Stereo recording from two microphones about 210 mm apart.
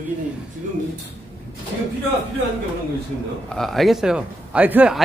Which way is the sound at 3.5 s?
Centre (ahead or behind).